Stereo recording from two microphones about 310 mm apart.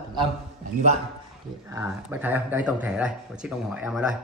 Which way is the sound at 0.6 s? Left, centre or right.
Right.